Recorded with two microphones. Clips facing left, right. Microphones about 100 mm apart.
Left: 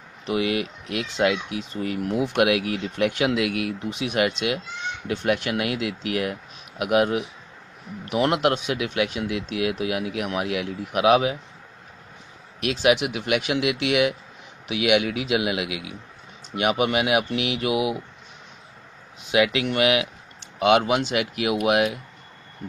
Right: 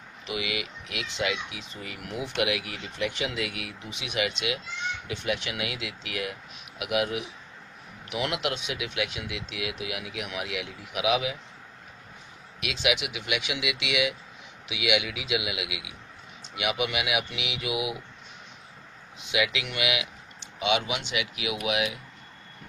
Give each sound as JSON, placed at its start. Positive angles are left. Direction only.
{"t": 0.3, "sound": "speech", "side_deg": 45}
{"t": 12.5, "sound": "speech", "side_deg": 45}
{"t": 19.3, "sound": "speech", "side_deg": 50}